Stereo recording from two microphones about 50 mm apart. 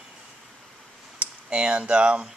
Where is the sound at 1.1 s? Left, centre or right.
Right.